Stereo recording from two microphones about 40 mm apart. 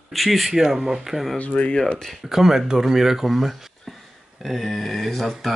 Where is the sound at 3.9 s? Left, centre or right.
Centre.